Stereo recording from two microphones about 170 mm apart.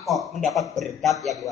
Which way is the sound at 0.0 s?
Centre (ahead or behind).